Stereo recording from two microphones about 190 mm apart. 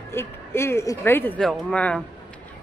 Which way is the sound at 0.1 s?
15° left (ahead or behind).